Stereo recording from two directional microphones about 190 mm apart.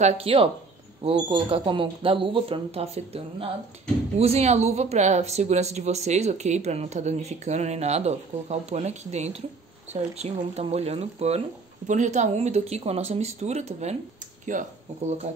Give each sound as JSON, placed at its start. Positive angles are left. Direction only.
{"t": 0.0, "sound": "speech", "side_deg": -30}